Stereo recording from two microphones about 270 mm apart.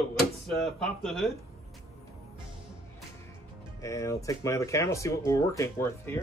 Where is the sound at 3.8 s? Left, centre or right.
Centre.